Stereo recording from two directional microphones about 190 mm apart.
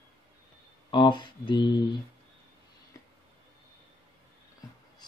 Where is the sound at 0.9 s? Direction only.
25° left (ahead or behind).